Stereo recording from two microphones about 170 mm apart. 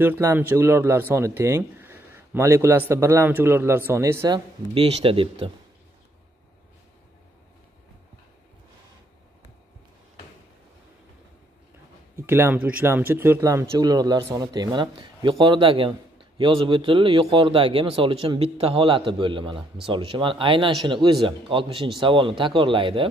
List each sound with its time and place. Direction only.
0.0 s a man's voice: 15° right (ahead or behind)
4.7 s speech: 35° right (ahead or behind)
12.2 s speech: 15° right (ahead or behind); by 23.0 s 30° right (ahead or behind)